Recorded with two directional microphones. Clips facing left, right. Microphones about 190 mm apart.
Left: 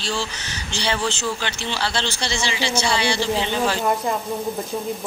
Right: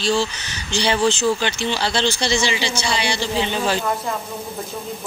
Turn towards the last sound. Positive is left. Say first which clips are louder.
# left 1 dB
turn(degrees=-15)  # may be behind; listen again after turning